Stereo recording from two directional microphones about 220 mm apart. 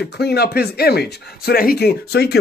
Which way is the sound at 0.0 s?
45° left (ahead or behind).